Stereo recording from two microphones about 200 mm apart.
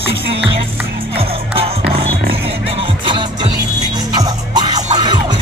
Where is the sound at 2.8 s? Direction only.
25° right (ahead or behind).